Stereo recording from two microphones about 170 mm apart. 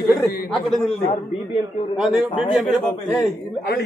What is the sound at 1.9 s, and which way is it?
A man's voice, 5° right (ahead or behind).